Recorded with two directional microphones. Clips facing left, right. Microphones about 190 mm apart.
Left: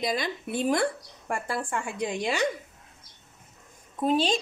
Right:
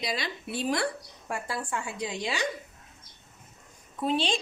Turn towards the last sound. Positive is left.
turn(degrees=45)  # may be behind; listen again after turning